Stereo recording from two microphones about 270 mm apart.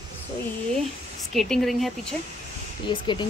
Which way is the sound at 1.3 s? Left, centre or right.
Centre.